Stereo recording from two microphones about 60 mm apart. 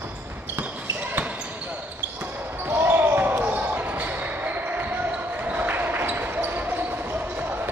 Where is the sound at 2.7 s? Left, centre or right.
Right.